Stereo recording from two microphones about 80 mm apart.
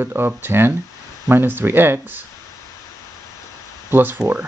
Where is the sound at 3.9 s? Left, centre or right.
Right.